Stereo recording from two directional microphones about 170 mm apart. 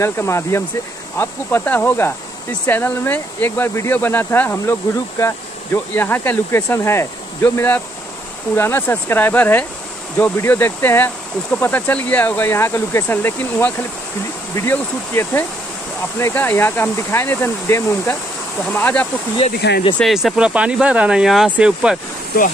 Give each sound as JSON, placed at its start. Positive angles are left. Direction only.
{"t": 0.0, "sound": "speech", "side_deg": 15}
{"t": 5.9, "sound": "speech", "side_deg": 10}
{"t": 19.6, "sound": "speech", "side_deg": 90}
{"t": 20.0, "sound": "speech", "side_deg": 0}